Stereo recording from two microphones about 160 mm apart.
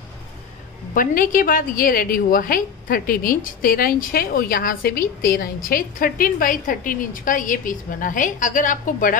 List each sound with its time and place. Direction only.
0.9 s a woman's voice: 60° left (ahead or behind)